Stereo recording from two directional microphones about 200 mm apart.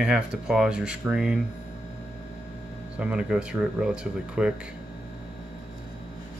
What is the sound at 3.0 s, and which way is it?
Speech, 5° right (ahead or behind).